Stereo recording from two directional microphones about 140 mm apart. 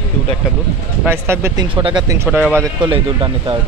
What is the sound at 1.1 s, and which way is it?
Speech, 20° right (ahead or behind).